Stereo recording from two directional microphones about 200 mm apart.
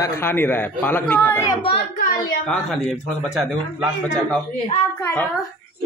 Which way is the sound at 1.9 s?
45° left (ahead or behind).